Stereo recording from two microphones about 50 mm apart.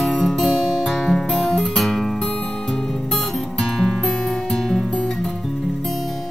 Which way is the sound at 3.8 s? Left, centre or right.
Centre.